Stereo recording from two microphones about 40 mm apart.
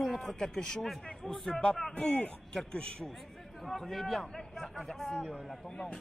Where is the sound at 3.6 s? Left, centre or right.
Centre.